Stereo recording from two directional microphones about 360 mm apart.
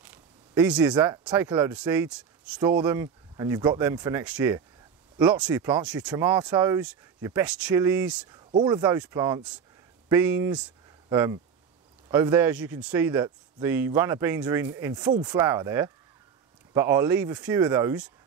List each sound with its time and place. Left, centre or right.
0.0 s speech: centre